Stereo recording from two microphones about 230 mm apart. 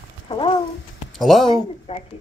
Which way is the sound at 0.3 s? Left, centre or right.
Left.